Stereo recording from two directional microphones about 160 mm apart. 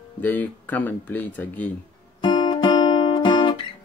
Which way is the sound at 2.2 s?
25° left (ahead or behind).